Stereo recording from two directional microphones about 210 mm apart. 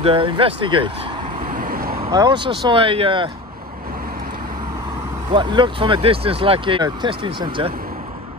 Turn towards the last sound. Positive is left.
turn(degrees=-20)  # may be behind; listen again after turning